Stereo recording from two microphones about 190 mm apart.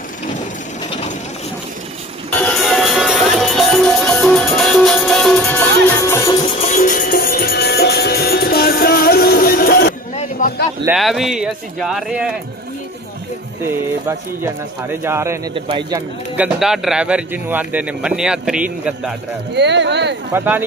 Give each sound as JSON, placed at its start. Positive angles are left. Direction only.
{"t": 2.3, "sound": "music", "side_deg": 5}
{"t": 6.4, "sound": "music", "side_deg": 40}
{"t": 10.4, "sound": "a sound", "side_deg": 40}
{"t": 10.9, "sound": "speech", "side_deg": 0}
{"t": 13.7, "sound": "speech", "side_deg": -10}
{"t": 19.5, "sound": "speech", "side_deg": -65}
{"t": 20.3, "sound": "speech", "side_deg": -10}